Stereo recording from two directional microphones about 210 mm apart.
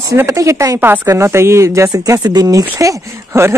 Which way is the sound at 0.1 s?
15° right (ahead or behind).